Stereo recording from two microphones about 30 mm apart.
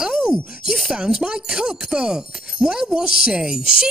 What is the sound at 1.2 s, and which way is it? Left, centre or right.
A woman's voice, right.